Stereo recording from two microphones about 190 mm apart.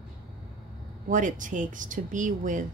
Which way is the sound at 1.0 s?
45° right (ahead or behind).